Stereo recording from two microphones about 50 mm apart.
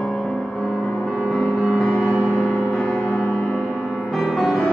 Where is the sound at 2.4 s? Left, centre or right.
Left.